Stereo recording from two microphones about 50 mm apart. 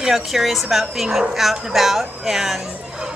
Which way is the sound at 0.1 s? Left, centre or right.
Centre.